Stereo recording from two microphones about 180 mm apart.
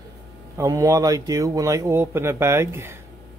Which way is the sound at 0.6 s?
15° right (ahead or behind).